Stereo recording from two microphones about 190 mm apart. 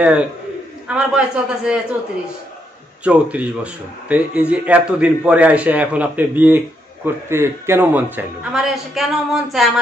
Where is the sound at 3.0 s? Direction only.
5° right (ahead or behind).